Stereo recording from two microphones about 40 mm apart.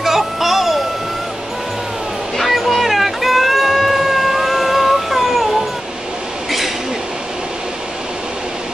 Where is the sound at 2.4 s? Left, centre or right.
Centre.